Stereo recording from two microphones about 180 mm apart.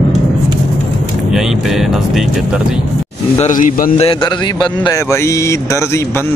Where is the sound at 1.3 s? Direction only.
Centre (ahead or behind).